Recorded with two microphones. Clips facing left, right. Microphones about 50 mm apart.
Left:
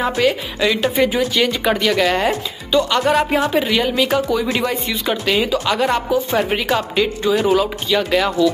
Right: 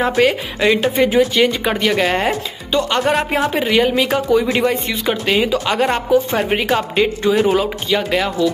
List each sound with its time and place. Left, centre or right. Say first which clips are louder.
0.1 s speech: right 2 dB; right
6.3 s speech: right 1 dB; right